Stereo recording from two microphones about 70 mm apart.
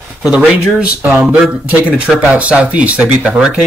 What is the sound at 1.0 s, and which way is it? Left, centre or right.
Speech, right.